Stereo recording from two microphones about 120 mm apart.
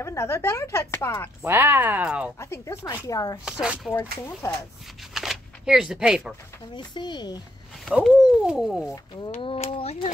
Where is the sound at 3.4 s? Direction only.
5° right (ahead or behind).